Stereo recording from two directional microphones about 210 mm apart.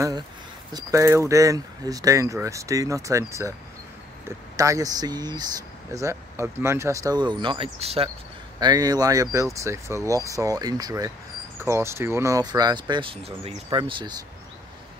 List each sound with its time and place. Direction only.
0.7 s speech: 15° right (ahead or behind)
4.6 s speech: 15° right (ahead or behind)